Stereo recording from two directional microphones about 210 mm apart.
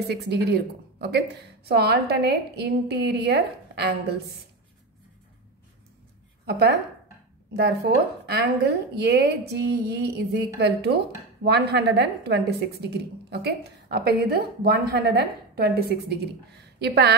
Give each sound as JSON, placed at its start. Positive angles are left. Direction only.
{"t": 0.1, "sound": "a woman's voice", "side_deg": -50}
{"t": 6.4, "sound": "a woman's voice", "side_deg": -50}